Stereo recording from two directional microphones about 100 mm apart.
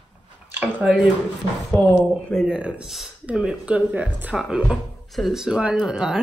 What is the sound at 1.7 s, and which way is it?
Speech, 20° left (ahead or behind).